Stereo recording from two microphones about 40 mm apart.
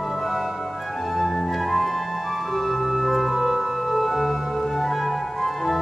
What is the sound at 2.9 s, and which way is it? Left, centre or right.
Organ, centre.